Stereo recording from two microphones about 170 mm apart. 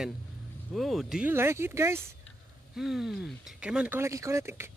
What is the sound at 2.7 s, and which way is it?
Speech, 5° right (ahead or behind).